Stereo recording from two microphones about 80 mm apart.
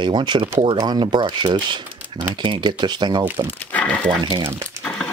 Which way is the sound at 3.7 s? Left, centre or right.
Centre.